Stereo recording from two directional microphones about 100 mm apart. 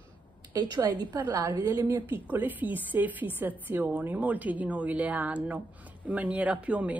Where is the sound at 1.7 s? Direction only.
20° right (ahead or behind).